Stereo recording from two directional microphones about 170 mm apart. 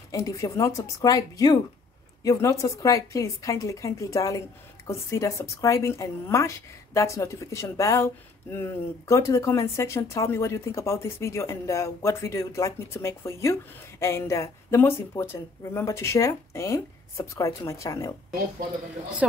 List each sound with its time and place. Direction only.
0.1 s a woman's voice: 20° left (ahead or behind)
2.6 s a woman's voice: 20° left (ahead or behind)